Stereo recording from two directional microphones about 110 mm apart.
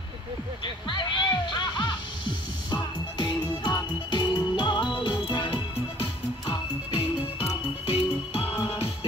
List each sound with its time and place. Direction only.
0.8 s music: 45° left (ahead or behind)
8.5 s music: 60° left (ahead or behind)